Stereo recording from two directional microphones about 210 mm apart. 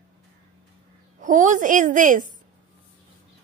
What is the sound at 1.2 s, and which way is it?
Speech, 35° right (ahead or behind).